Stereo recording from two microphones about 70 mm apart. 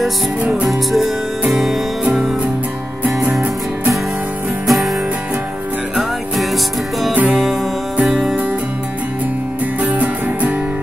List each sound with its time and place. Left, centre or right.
0.4 s music: centre
0.7 s music: centre
3.1 s music: centre
4.6 s music: centre
5.9 s music: centre
9.8 s music: right